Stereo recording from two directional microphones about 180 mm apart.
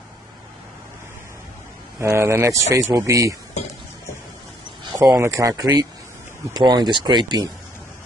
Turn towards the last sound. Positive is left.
turn(degrees=-25)  # may be behind; listen again after turning